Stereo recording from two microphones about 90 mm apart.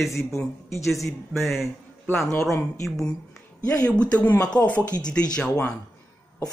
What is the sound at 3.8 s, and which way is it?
Speech, 15° left (ahead or behind).